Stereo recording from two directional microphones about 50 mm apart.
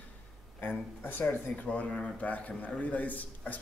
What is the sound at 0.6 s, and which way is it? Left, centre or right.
Speech, left.